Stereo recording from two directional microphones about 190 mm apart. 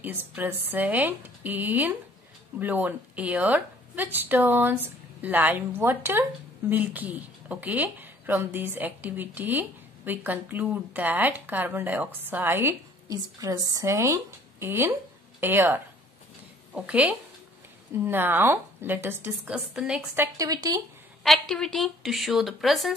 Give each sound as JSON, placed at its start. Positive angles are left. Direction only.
{"t": 0.0, "sound": "speech", "side_deg": -10}
{"t": 20.3, "sound": "speech", "side_deg": -20}
{"t": 21.2, "sound": "speech", "side_deg": 0}